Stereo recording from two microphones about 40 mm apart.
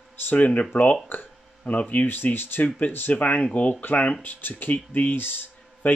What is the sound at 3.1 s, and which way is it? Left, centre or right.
Speech, left.